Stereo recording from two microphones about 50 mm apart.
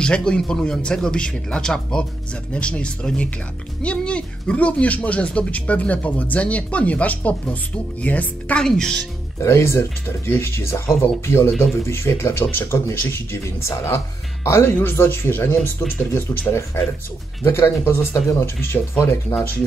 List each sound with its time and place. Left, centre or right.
0.0 s speech: centre
8.5 s speech: centre
9.4 s speech: left
14.8 s speech: left